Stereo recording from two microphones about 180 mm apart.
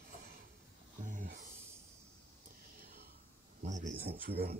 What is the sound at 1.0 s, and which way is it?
Speech, 50° right (ahead or behind).